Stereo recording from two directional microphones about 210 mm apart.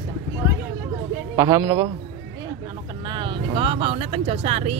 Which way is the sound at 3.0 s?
25° right (ahead or behind).